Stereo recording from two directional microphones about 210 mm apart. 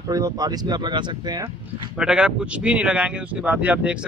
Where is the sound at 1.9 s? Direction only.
5° right (ahead or behind).